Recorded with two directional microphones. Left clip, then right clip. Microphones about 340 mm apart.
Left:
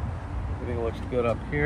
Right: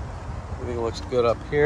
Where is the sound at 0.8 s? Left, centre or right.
Centre.